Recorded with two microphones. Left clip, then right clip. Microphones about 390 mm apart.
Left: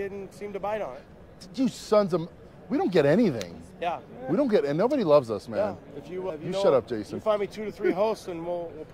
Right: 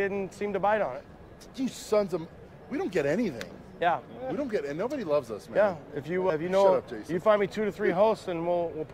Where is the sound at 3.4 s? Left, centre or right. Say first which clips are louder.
Right 1 dB; right.